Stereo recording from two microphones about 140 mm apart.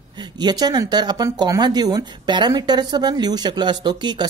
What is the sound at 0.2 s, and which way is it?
Speech, 30° right (ahead or behind).